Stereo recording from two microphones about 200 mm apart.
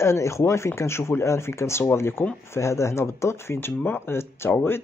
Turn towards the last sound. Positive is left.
turn(degrees=10)  # may be behind; listen again after turning